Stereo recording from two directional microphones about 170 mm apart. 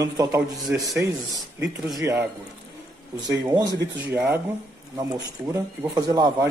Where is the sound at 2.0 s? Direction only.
20° right (ahead or behind).